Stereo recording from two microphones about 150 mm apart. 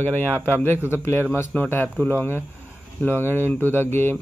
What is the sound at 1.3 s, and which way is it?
Speech, 15° left (ahead or behind).